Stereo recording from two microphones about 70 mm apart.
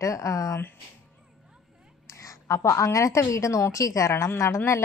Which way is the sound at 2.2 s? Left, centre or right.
Left.